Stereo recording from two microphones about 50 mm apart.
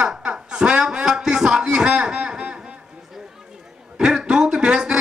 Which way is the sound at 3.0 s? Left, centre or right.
Centre.